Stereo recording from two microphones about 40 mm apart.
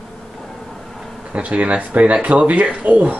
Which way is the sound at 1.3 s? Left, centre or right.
Right.